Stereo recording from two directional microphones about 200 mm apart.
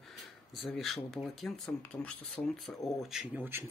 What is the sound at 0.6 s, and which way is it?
Speech, centre (ahead or behind).